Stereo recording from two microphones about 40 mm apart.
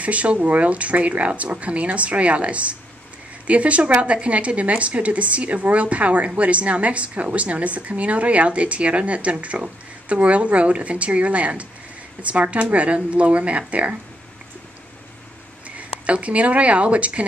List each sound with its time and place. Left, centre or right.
0.0 s speech: right
16.1 s speech: right